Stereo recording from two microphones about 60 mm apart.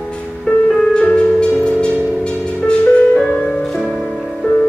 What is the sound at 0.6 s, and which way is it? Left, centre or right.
Music, centre.